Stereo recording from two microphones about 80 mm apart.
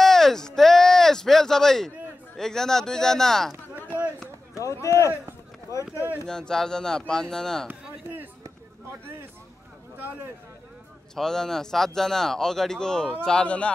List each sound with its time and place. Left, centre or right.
0.0 s a sound: centre
2.3 s speech: centre
3.7 s a sound: right
4.6 s speech: left
6.2 s speech: centre
11.1 s speech: centre